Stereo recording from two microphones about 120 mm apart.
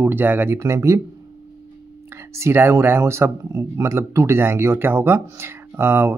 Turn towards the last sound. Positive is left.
turn(degrees=-20)  # may be behind; listen again after turning